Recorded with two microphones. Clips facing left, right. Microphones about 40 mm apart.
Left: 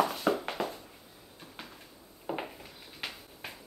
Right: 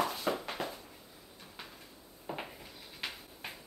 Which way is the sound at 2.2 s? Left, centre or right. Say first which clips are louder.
Left 5 dB; centre.